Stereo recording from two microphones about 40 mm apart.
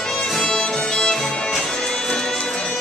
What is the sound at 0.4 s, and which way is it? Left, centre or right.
Music, left.